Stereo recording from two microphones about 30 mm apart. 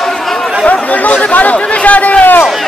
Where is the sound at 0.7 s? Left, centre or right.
Left.